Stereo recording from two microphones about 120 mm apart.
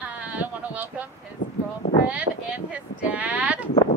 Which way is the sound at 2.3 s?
65° right (ahead or behind).